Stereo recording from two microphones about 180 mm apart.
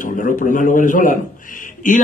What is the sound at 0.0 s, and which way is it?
A man's voice, 45° left (ahead or behind).